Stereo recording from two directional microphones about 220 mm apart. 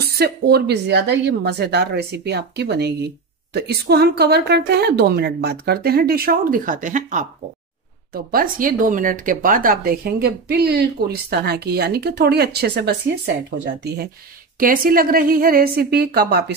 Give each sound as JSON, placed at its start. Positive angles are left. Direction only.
{"t": 0.0, "sound": "speech", "side_deg": -45}
{"t": 14.6, "sound": "a woman's voice", "side_deg": -40}